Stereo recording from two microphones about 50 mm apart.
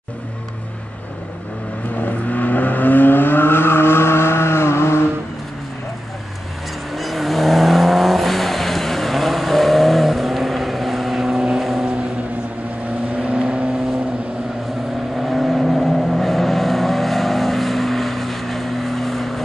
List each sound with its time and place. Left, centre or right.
2.0 s vehicle: left
6.9 s vehicle: centre
13.1 s vehicle: right
15.1 s vehicle: centre